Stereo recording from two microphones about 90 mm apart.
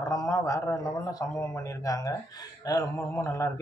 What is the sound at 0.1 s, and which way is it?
Speech, 40° left (ahead or behind).